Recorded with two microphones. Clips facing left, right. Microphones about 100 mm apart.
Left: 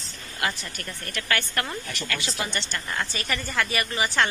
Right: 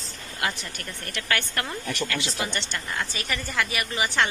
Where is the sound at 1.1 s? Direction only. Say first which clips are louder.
Left 1 dB; 20° right (ahead or behind).